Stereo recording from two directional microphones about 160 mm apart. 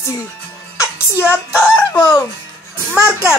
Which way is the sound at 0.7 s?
20° left (ahead or behind).